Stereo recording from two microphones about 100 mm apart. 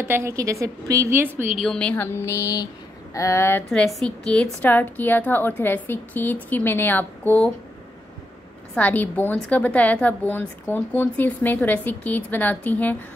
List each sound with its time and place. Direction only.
0.0 s a woman's voice: 25° right (ahead or behind)
1.6 s a woman's voice: 10° left (ahead or behind)
2.0 s a woman's voice: 25° left (ahead or behind)
3.7 s a woman's voice: 5° left (ahead or behind)
8.7 s a woman's voice: 15° left (ahead or behind)